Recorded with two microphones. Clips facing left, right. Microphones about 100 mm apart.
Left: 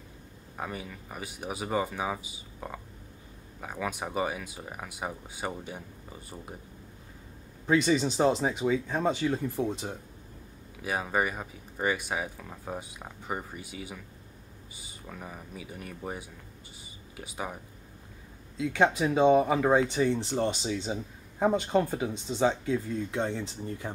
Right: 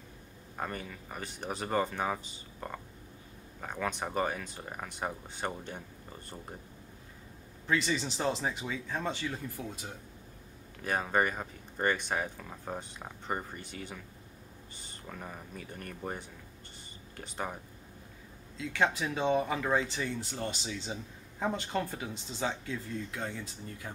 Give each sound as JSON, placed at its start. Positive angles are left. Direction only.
{"t": 0.6, "sound": "speech", "side_deg": 5}
{"t": 7.6, "sound": "speech", "side_deg": 20}
{"t": 10.8, "sound": "speech", "side_deg": 5}
{"t": 18.6, "sound": "speech", "side_deg": 20}